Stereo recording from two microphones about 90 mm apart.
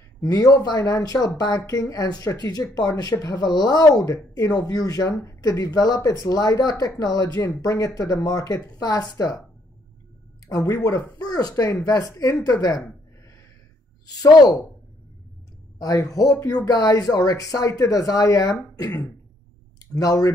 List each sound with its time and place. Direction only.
0.2 s speech: 40° left (ahead or behind)
10.5 s speech: 35° left (ahead or behind)
14.0 s speech: 50° left (ahead or behind)
15.8 s speech: 40° left (ahead or behind)